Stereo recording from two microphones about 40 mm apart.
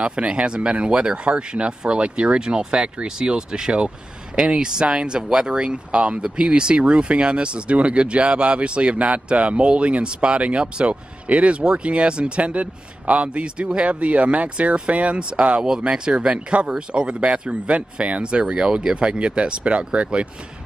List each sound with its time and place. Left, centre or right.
0.0 s speech: right
15.1 s speech: right